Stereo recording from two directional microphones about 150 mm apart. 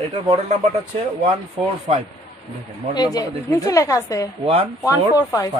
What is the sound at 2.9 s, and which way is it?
A woman's voice, 25° left (ahead or behind).